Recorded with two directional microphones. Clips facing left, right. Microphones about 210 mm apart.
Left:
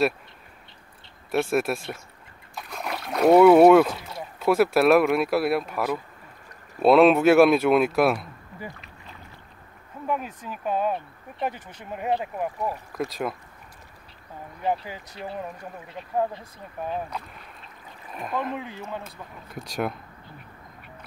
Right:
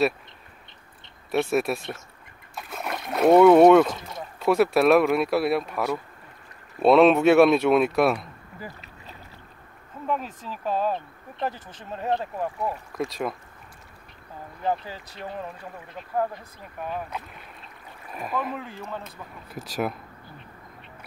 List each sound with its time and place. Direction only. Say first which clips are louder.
1.3 s speech: even; centre (ahead or behind)
2.5 s splash: even; centre (ahead or behind)
3.1 s speech: even; centre (ahead or behind)
10.0 s speech: even; 10° left (ahead or behind)
18.1 s speech: even; centre (ahead or behind)
18.5 s speech: left 2 dB; 20° left (ahead or behind)
19.5 s speech: even; centre (ahead or behind)